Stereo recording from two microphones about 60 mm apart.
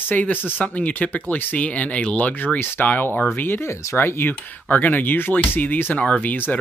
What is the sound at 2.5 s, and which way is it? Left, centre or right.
Speech, left.